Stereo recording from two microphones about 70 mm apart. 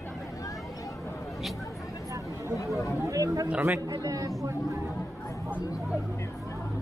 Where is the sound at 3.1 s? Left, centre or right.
Right.